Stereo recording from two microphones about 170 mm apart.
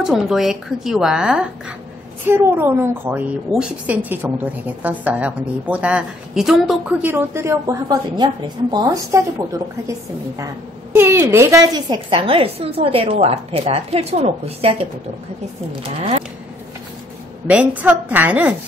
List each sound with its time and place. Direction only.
0.0 s a woman's voice: centre (ahead or behind); by 14.9 s 35° right (ahead or behind)
17.5 s a woman's voice: 10° right (ahead or behind)